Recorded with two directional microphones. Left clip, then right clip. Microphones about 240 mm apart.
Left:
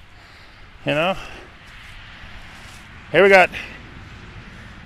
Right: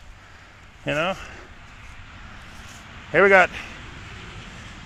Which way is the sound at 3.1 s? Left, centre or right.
Centre.